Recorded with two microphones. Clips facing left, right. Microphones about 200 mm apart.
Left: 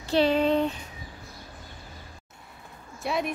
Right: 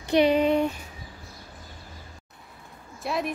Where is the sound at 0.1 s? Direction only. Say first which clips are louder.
Right 2 dB; 15° right (ahead or behind).